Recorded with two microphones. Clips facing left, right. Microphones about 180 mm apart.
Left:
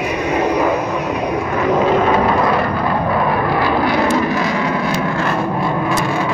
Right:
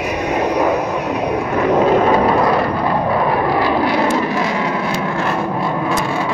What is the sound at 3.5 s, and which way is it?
Vehicle, 30° right (ahead or behind).